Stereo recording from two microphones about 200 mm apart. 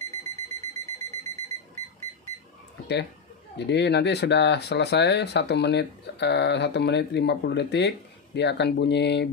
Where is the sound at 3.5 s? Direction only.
60° left (ahead or behind).